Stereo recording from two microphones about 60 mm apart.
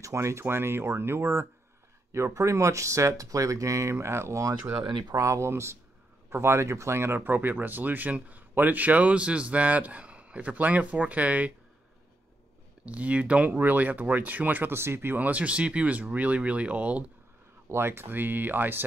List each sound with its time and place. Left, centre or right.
0.0 s speech: right
3.9 s speech: right
12.8 s speech: right
14.8 s speech: right
15.1 s speech: right
17.6 s speech: right